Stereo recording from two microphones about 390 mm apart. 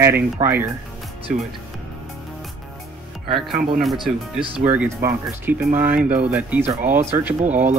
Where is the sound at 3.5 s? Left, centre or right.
Right.